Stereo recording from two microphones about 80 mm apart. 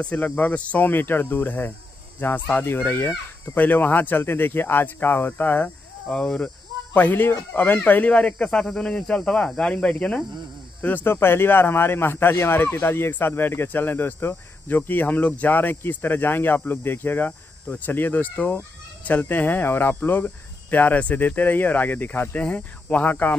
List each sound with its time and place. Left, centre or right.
0.0 s speech: centre
7.0 s speech: left